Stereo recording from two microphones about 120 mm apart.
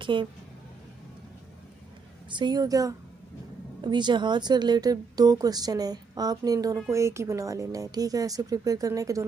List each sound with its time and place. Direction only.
0.0 s speech: 45° right (ahead or behind)
2.3 s a woman's voice: 35° right (ahead or behind)